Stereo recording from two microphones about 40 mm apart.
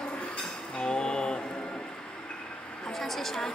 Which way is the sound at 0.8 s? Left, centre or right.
Left.